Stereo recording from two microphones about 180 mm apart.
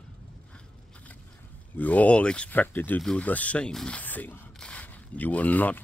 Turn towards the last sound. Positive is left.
turn(degrees=10)  # may be behind; listen again after turning